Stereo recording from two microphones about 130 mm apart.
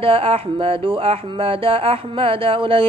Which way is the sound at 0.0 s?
45° right (ahead or behind).